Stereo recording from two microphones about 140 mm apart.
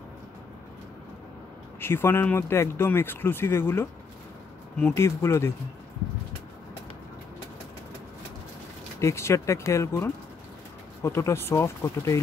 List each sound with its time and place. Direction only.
1.8 s speech: 15° left (ahead or behind)
9.0 s speech: 20° left (ahead or behind)